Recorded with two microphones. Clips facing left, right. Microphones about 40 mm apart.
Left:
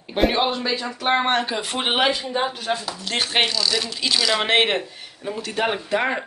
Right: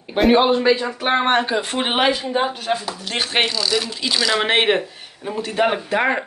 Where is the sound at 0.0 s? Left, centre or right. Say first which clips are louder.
Right 5 dB; centre.